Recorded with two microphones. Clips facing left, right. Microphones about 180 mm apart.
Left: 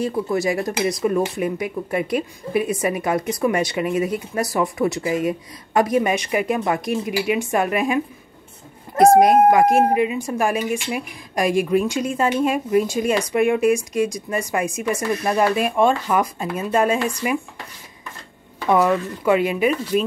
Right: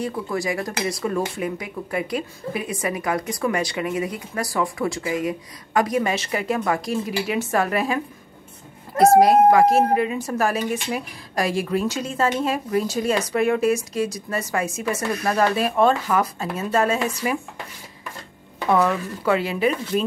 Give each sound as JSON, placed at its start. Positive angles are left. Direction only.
{"t": 0.0, "sound": "a woman's voice", "side_deg": 25}
{"t": 9.1, "sound": "a woman's voice", "side_deg": 20}
{"t": 18.7, "sound": "a woman's voice", "side_deg": 15}
{"t": 19.9, "sound": "speech", "side_deg": -40}